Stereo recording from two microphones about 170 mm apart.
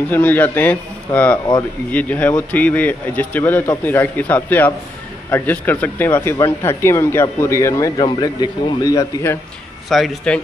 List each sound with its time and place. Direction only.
0.1 s speech: 10° left (ahead or behind)
9.8 s speech: centre (ahead or behind)